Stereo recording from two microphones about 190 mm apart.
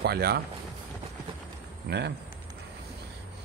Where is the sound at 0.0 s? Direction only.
55° right (ahead or behind).